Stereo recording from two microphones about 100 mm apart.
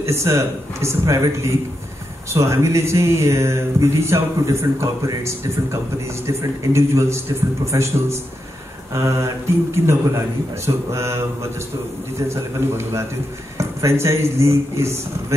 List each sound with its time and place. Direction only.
0.0 s speech: 30° right (ahead or behind)
8.9 s mantra: 30° right (ahead or behind)
9.8 s speech: 30° right (ahead or behind)
12.3 s speech: 25° right (ahead or behind)